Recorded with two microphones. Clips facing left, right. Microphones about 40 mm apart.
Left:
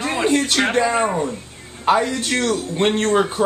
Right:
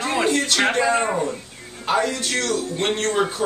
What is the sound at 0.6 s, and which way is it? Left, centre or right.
Speech, centre.